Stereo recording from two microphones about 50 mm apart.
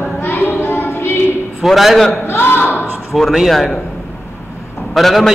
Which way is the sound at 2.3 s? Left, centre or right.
Left.